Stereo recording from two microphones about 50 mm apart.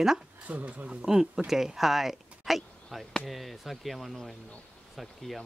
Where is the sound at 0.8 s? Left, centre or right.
Centre.